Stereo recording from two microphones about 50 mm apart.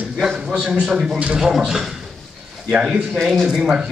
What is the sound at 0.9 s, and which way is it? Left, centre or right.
Speech, centre.